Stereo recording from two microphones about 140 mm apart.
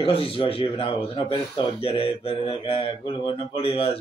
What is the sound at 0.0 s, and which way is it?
Speech, 40° left (ahead or behind).